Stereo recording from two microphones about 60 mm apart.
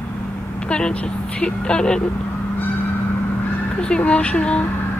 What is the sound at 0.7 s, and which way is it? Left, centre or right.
Speech, centre.